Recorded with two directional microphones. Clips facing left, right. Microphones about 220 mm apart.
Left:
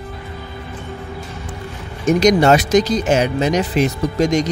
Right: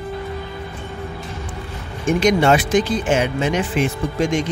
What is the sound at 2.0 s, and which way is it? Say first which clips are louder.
Speech: left 3 dB; 40° left (ahead or behind).